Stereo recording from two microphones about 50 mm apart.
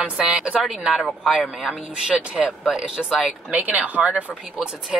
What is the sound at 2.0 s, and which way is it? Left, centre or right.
Speech, centre.